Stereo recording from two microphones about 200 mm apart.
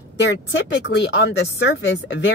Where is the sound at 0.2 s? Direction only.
60° left (ahead or behind).